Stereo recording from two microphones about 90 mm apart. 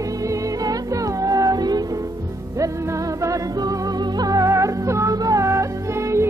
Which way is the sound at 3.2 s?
40° right (ahead or behind).